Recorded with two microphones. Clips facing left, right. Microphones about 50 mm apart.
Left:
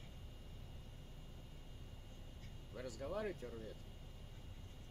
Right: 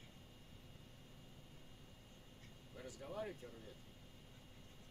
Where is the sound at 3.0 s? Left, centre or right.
Left.